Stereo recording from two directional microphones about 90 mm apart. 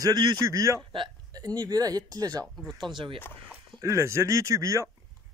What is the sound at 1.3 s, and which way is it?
Speech, 50° right (ahead or behind).